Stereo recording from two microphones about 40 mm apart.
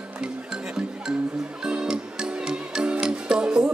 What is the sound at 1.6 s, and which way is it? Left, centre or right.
Music, right.